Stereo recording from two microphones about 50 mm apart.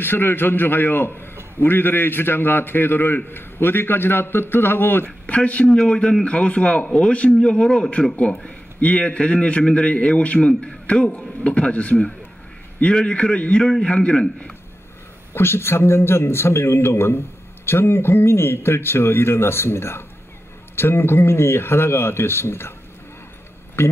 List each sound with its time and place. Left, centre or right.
0.0 s a man's voice: left
5.2 s speech: left
5.7 s a man's voice: centre
15.3 s speech: left
23.8 s speech: left